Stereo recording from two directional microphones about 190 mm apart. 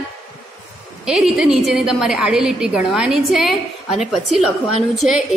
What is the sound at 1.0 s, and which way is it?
A woman's voice, 5° right (ahead or behind).